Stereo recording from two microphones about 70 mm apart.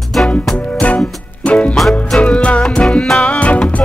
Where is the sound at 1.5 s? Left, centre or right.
Centre.